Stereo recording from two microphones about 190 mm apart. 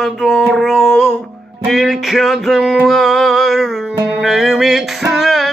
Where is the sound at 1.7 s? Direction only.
Centre (ahead or behind).